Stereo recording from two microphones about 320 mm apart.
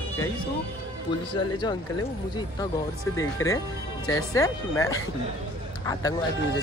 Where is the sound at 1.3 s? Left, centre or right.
Centre.